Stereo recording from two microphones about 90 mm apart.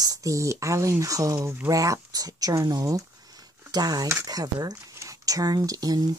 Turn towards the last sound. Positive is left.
turn(degrees=-45)  # may be behind; listen again after turning